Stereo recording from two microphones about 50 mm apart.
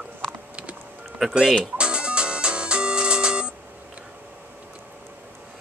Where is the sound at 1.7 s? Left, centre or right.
Centre.